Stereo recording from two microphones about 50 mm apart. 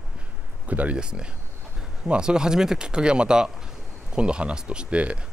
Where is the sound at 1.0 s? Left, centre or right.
Centre.